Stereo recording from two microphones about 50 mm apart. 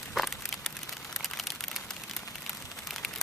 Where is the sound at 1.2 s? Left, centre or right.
Centre.